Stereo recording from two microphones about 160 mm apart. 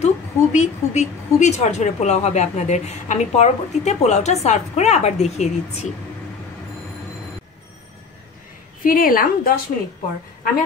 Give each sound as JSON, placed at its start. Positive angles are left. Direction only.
{"t": 0.0, "sound": "a woman's voice", "side_deg": 45}
{"t": 8.8, "sound": "a woman's voice", "side_deg": 65}